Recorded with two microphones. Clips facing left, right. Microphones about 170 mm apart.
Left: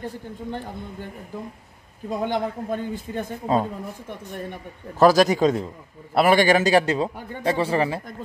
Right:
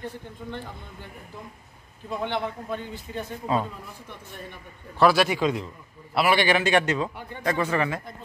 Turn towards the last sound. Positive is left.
turn(degrees=30)  # may be behind; listen again after turning